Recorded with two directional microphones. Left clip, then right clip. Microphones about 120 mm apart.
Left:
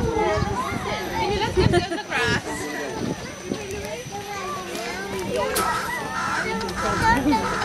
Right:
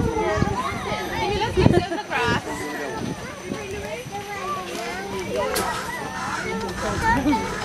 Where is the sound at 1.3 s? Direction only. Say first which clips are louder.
Right 2 dB; 20° left (ahead or behind).